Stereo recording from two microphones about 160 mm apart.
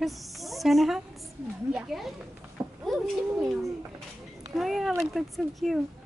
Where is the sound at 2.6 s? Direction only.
15° right (ahead or behind).